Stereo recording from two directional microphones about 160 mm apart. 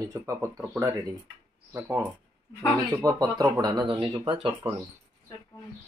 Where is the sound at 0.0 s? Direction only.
20° right (ahead or behind).